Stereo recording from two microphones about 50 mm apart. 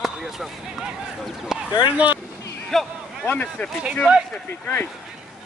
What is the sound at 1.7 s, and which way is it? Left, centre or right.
Speech, right.